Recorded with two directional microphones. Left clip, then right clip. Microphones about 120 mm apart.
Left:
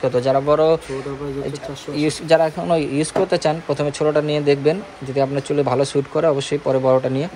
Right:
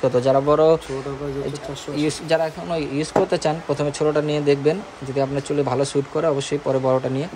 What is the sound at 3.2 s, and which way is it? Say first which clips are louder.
Speech: left 5 dB; 15° right (ahead or behind).